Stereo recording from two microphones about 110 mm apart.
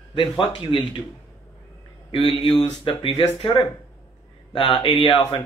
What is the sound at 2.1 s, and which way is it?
Speech, 50° left (ahead or behind).